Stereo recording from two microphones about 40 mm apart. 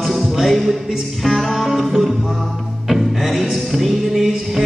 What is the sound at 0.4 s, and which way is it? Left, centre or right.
Music, centre.